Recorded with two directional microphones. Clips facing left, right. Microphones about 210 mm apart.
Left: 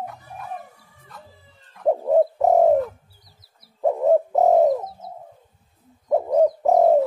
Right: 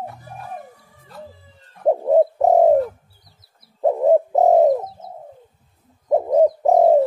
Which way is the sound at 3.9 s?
15° right (ahead or behind).